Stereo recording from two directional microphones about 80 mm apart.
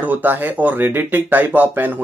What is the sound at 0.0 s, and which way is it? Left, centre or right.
Speech, right.